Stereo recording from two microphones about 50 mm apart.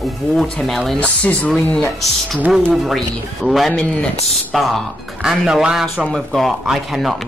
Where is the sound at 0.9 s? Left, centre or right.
Left.